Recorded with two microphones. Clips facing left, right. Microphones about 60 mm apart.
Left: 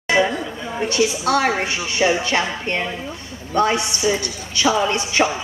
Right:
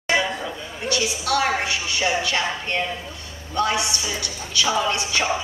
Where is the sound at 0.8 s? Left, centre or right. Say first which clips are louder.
Left 4 dB; left.